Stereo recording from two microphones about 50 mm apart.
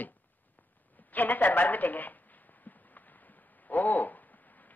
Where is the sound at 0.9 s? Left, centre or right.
Left.